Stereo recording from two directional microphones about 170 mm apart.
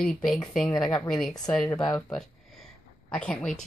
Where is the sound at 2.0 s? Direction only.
Centre (ahead or behind).